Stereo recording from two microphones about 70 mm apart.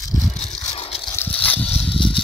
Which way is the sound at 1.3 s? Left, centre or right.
Left.